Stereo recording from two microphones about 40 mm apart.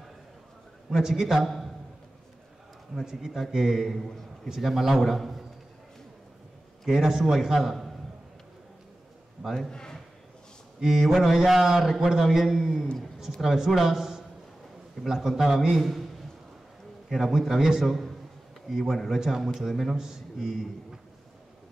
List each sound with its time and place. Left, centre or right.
0.8 s a man's voice: centre
3.3 s a man's voice: centre
6.8 s a man's voice: centre
9.4 s a man's voice: centre
9.7 s speech: centre
10.8 s a man's voice: centre
17.1 s a man's voice: centre
17.8 s a man's voice: centre